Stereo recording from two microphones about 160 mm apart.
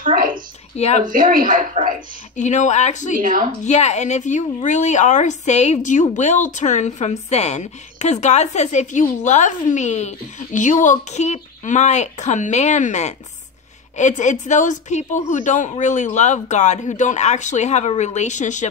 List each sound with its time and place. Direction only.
0.0 s a sound: 60° right (ahead or behind)
0.7 s a woman's voice: 40° left (ahead or behind)
1.0 s a woman's voice: 60° right (ahead or behind)
2.3 s a woman's voice: 50° left (ahead or behind)
3.2 s a woman's voice: 55° right (ahead or behind)
3.6 s a woman's voice: 45° left (ahead or behind)